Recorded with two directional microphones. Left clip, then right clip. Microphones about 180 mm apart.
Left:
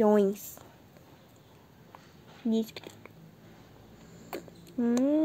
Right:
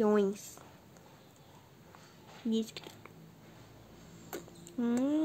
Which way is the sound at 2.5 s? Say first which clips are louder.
Left 4 dB; 15° left (ahead or behind).